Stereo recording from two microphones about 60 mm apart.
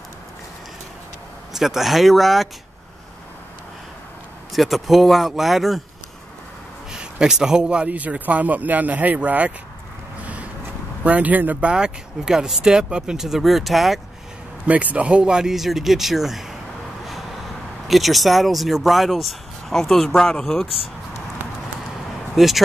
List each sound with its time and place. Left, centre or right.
1.5 s speech: centre
4.5 s speech: centre
6.9 s a man's voice: centre
11.1 s a man's voice: right
11.7 s speech: centre
14.7 s speech: right; by 16.4 s centre
17.8 s speech: centre
22.3 s speech: centre